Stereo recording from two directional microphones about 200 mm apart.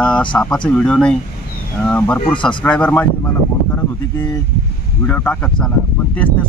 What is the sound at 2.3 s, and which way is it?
Speech, 25° left (ahead or behind).